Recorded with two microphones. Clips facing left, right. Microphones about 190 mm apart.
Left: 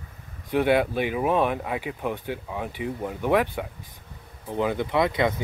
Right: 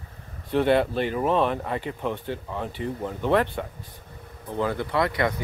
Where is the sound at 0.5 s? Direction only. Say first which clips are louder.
Even; 10° left (ahead or behind).